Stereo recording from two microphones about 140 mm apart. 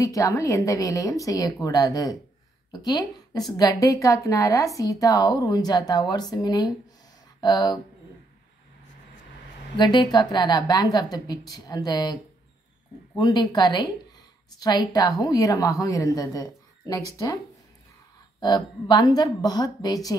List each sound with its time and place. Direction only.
0.0 s a woman's voice: 25° left (ahead or behind)
9.8 s a woman's voice: 30° left (ahead or behind)
13.2 s a woman's voice: 30° left (ahead or behind)
18.4 s a woman's voice: 30° left (ahead or behind)